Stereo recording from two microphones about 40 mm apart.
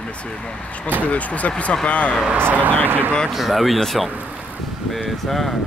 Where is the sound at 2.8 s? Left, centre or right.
Right.